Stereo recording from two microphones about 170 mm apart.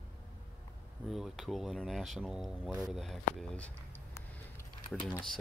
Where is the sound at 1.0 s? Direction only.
Centre (ahead or behind).